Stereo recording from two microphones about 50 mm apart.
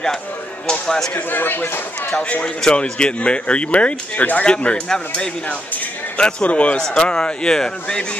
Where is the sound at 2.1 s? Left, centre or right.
Centre.